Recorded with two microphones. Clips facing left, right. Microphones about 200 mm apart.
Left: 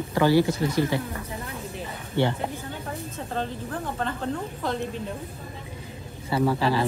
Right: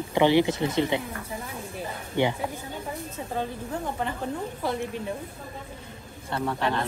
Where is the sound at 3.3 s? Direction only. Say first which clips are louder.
Even; 10° right (ahead or behind).